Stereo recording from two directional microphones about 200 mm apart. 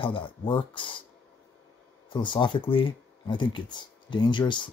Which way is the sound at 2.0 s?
25° left (ahead or behind).